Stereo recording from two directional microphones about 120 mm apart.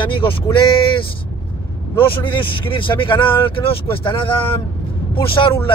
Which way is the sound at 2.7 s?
45° left (ahead or behind).